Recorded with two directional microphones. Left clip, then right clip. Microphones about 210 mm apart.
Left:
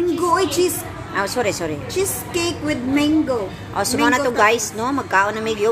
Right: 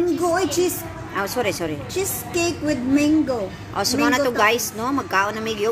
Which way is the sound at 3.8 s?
5° right (ahead or behind).